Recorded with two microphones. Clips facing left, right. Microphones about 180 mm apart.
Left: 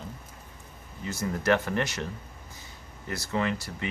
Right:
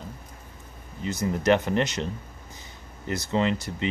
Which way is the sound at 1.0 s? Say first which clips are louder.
Right 4 dB; 20° right (ahead or behind).